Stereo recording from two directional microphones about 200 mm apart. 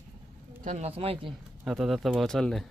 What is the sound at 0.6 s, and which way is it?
Speech, 35° right (ahead or behind).